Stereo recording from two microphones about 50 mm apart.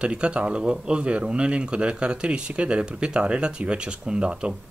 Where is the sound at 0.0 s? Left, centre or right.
Centre.